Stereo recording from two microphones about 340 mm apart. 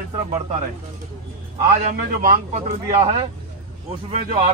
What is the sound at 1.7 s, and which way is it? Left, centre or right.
Speech, right.